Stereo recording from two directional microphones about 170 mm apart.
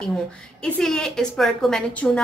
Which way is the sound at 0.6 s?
5° left (ahead or behind).